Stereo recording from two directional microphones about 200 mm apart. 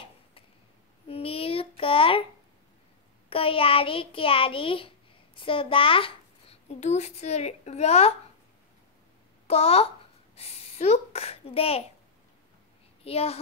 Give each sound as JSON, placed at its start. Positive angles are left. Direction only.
{"t": 1.0, "sound": "child singing", "side_deg": 30}
{"t": 3.3, "sound": "a child's voice", "side_deg": 30}
{"t": 9.5, "sound": "a woman's voice", "side_deg": 30}
{"t": 13.0, "sound": "a woman's voice", "side_deg": 30}